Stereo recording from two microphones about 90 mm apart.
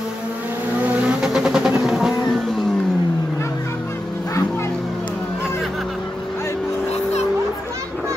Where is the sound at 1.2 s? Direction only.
5° right (ahead or behind).